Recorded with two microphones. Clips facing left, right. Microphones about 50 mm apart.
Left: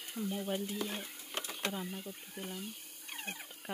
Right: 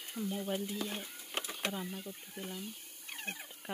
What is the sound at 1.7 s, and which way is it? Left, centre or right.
Stir, centre.